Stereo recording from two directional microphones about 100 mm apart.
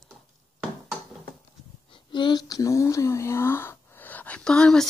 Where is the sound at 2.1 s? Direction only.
50° left (ahead or behind).